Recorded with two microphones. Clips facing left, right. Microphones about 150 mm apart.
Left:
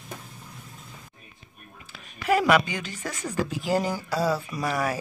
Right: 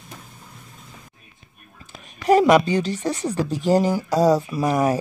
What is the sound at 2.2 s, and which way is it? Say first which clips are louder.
Speech: right 6 dB; 40° right (ahead or behind).